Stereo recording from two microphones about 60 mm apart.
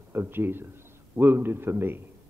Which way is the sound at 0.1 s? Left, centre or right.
Right.